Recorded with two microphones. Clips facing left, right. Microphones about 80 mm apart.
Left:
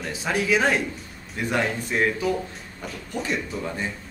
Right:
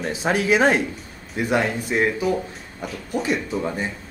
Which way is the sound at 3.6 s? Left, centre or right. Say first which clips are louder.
Right 4 dB; centre.